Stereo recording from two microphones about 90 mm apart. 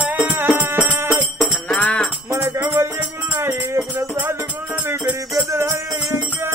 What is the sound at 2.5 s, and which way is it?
Music, 30° right (ahead or behind).